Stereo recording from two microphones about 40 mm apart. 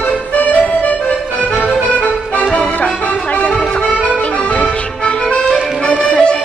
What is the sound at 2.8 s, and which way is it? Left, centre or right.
Music, left.